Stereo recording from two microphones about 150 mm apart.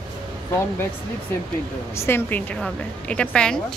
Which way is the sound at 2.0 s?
15° left (ahead or behind).